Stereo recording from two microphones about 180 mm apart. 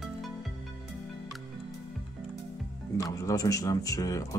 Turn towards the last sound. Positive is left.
turn(degrees=20)  # may be behind; listen again after turning